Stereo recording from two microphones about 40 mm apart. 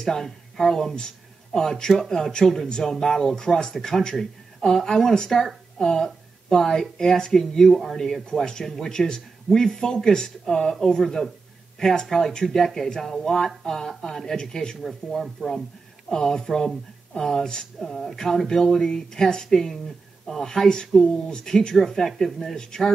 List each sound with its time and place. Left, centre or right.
0.0 s speech: centre
15.0 s speech: centre